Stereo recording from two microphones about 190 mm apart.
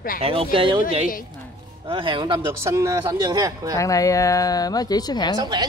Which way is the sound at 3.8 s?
15° left (ahead or behind).